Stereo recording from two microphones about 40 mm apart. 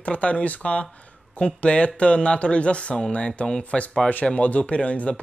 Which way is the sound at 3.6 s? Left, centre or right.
Left.